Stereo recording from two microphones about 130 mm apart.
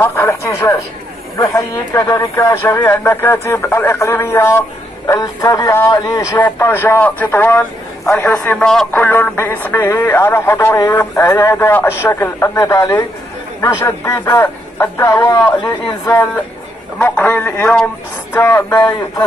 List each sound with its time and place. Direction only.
0.0 s speech: 20° left (ahead or behind)
6.3 s speech: 15° left (ahead or behind)
17.0 s speech: 10° left (ahead or behind)